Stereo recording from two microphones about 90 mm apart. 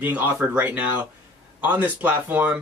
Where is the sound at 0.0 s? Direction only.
20° right (ahead or behind).